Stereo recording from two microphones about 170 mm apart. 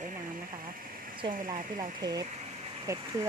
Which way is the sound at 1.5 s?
25° right (ahead or behind).